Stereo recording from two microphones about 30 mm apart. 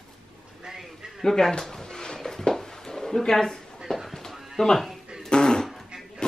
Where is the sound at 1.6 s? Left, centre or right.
Centre.